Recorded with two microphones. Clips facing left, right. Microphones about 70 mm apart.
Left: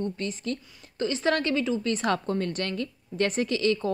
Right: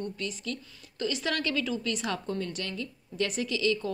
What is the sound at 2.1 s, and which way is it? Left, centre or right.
A woman's voice, left.